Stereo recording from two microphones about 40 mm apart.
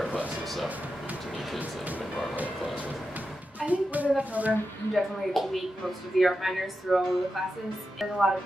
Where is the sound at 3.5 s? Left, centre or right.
Right.